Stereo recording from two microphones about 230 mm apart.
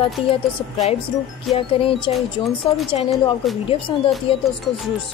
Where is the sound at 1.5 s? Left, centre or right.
Left.